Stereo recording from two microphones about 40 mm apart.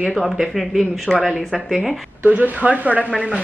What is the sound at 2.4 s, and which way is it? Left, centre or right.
Speech, right.